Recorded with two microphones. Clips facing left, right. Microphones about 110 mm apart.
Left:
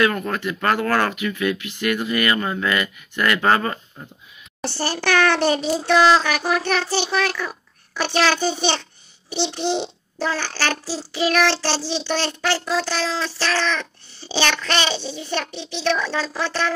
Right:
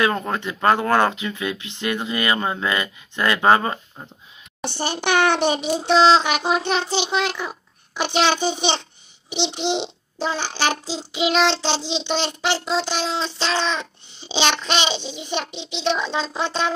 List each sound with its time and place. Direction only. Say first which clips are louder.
0.0 s a child's voice: left 1 dB; 25° right (ahead or behind)